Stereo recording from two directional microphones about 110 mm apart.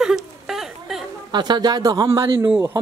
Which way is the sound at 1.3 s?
40° right (ahead or behind).